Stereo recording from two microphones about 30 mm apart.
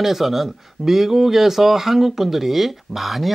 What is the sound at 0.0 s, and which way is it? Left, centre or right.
Speech, centre.